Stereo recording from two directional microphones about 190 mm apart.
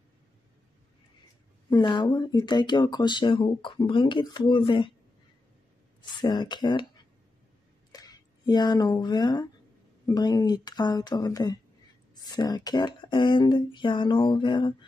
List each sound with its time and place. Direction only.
1.7 s speech: 25° left (ahead or behind)
6.2 s speech: 25° left (ahead or behind)
7.9 s speech: 20° left (ahead or behind)